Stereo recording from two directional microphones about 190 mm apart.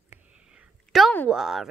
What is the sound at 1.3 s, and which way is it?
Speech, centre (ahead or behind).